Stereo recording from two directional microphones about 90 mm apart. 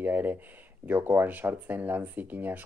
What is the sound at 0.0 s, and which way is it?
Speech, 20° right (ahead or behind).